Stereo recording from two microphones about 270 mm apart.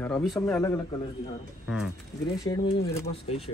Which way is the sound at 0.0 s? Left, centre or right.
Centre.